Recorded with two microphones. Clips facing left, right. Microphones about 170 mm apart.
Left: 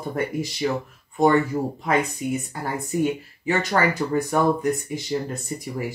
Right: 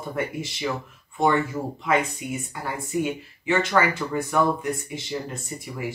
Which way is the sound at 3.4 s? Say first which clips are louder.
Even; 40° left (ahead or behind).